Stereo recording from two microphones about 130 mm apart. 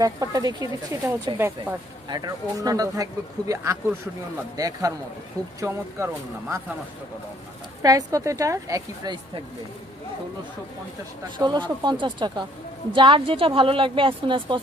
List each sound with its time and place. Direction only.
0.0 s speech: 30° right (ahead or behind)
1.7 s speech: 10° right (ahead or behind)
2.0 s speech: 30° right (ahead or behind)
7.8 s speech: 25° right (ahead or behind)
11.3 s speech: 35° right (ahead or behind)